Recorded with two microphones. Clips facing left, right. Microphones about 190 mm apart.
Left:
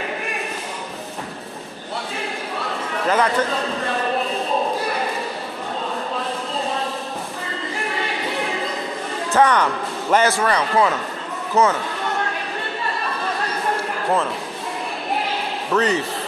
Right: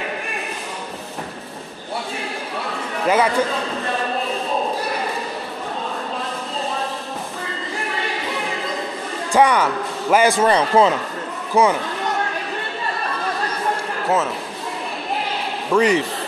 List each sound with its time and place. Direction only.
3.1 s speech: 10° right (ahead or behind)
9.3 s a man's voice: 10° right (ahead or behind)
11.6 s speech: 10° right (ahead or behind)
15.7 s speech: 15° right (ahead or behind)